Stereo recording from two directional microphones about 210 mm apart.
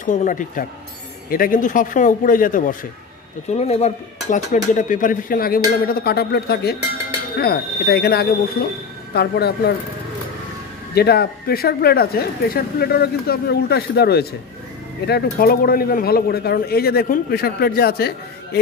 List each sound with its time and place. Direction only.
0.0 s speech: 35° left (ahead or behind)
11.0 s speech: 50° left (ahead or behind)